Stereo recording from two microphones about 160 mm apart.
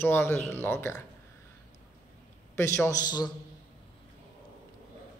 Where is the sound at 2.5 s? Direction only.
15° left (ahead or behind).